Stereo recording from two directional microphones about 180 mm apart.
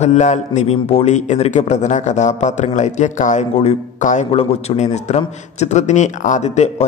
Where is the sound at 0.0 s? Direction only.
40° left (ahead or behind).